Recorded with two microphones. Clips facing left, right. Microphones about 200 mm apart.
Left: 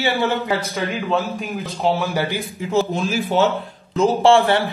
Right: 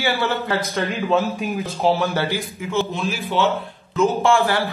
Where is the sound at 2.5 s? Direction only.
35° left (ahead or behind).